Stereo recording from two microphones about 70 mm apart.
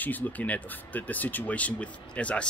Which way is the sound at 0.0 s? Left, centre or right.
Left.